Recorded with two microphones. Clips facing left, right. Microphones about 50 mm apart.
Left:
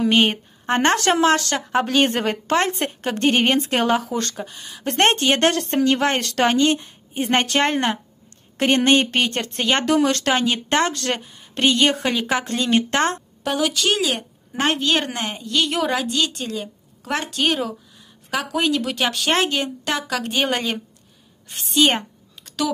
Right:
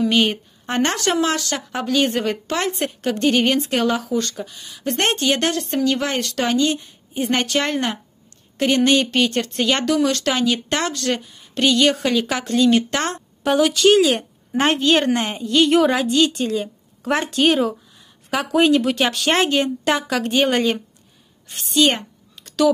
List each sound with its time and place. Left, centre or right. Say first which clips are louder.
0.0 s a woman's voice: even; left
0.9 s a woman's voice: left 3 dB; left
4.4 s speech: even; left
4.9 s a woman's voice: left 2 dB; left
7.7 s speech: left 1 dB; left
8.5 s a woman's voice: even; left
9.4 s speech: right 1 dB; left
9.8 s a woman's voice: left 1 dB; left; by 12.4 s centre
12.4 s speech: right 4 dB; left
13.4 s a woman's voice: right 6 dB; centre